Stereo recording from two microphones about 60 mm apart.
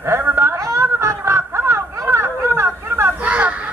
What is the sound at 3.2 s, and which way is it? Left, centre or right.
Children playing, right.